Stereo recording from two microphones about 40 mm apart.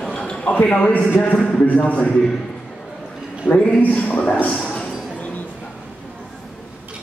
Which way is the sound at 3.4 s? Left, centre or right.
Right.